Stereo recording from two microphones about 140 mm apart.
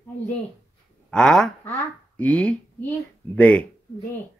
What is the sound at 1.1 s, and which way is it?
Speech, 5° left (ahead or behind).